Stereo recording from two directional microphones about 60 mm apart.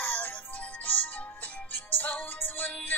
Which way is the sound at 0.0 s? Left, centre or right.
Left.